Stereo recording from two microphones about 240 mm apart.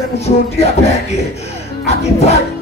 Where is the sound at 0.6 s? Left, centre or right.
Left.